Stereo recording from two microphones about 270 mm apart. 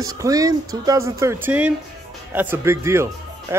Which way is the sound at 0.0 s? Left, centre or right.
Centre.